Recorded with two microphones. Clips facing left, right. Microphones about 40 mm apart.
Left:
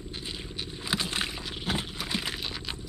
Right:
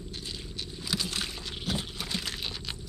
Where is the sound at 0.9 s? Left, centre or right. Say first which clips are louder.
Left 3 dB; left.